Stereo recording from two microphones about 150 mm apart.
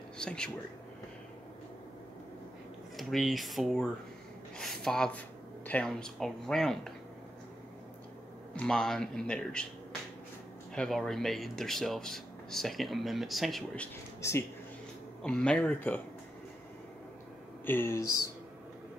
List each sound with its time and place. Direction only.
0.2 s speech: 5° left (ahead or behind)
3.0 s speech: centre (ahead or behind)
8.5 s speech: 5° left (ahead or behind)
10.7 s speech: 5° left (ahead or behind)
15.2 s speech: 5° left (ahead or behind)
17.6 s speech: 15° left (ahead or behind)